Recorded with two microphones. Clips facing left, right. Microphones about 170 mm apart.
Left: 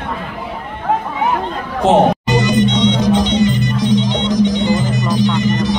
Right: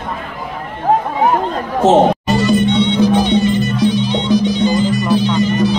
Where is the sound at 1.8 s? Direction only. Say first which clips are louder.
Right 1 dB; 15° left (ahead or behind).